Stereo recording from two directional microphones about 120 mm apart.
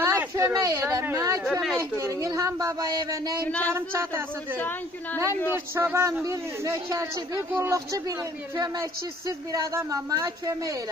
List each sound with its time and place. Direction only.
0.0 s a sound: 25° right (ahead or behind)
1.0 s speech: 25° right (ahead or behind)
3.4 s a woman's voice: 10° left (ahead or behind)
3.7 s speech: 20° right (ahead or behind)
4.6 s a woman's voice: 15° left (ahead or behind)
5.5 s speech: 20° right (ahead or behind)
9.5 s speech: 30° right (ahead or behind)